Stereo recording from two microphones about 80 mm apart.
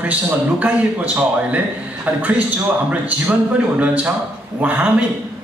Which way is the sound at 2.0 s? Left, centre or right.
Centre.